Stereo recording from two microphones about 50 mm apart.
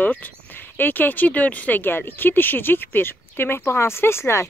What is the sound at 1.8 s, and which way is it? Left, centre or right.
Speech, left.